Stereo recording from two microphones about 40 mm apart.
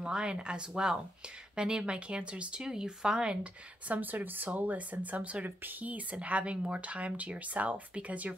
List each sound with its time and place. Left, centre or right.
0.0 s speech: right
3.9 s speech: right